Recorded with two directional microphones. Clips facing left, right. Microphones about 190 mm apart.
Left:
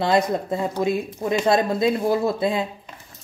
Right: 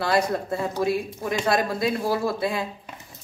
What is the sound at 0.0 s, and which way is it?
Speech, 20° left (ahead or behind).